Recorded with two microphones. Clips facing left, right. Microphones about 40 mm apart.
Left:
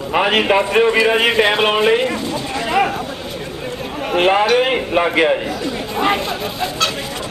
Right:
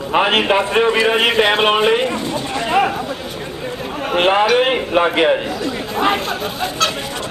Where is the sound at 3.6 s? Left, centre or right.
Centre.